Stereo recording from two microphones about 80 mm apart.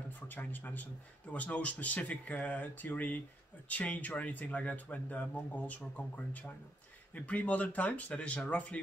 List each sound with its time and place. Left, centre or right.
0.3 s speech: left